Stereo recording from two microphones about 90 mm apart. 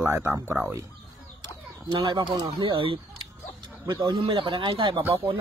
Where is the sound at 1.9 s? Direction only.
60° right (ahead or behind).